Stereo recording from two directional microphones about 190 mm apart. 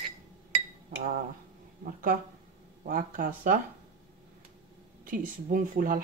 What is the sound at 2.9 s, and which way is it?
Speech, 45° right (ahead or behind).